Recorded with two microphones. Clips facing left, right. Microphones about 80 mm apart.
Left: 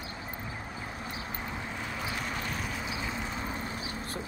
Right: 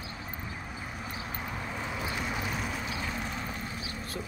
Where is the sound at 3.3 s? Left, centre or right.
Centre.